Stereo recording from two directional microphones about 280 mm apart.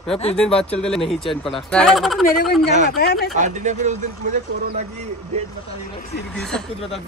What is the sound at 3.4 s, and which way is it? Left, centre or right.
Speech, right.